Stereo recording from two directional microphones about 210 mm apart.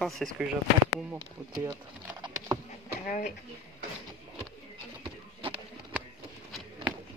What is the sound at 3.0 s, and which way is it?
Speech, 40° left (ahead or behind).